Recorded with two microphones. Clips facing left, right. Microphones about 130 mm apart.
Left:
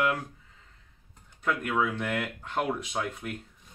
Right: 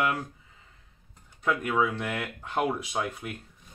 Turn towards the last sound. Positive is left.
turn(degrees=-5)  # may be behind; listen again after turning